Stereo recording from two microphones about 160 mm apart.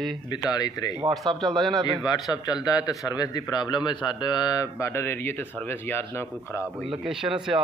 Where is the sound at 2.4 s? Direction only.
25° left (ahead or behind).